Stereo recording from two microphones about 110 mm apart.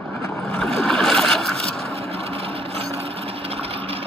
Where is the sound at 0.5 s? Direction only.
5° left (ahead or behind).